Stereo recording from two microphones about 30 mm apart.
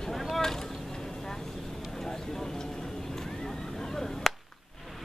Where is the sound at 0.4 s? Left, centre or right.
Centre.